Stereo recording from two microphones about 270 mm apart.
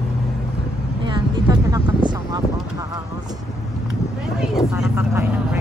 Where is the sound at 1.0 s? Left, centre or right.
Centre.